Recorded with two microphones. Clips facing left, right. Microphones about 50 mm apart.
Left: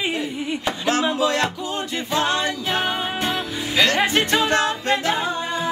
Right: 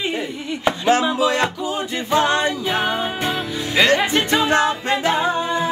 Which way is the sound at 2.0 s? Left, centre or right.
Centre.